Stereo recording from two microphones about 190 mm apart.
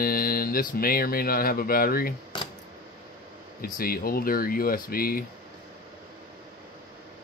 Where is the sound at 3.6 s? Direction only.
50° left (ahead or behind).